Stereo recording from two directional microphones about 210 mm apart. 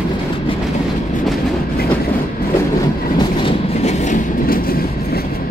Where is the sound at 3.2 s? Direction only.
25° left (ahead or behind); by 5.2 s 45° left (ahead or behind).